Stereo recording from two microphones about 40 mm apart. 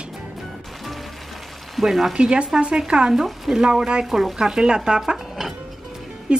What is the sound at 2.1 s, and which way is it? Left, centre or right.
Speech, right.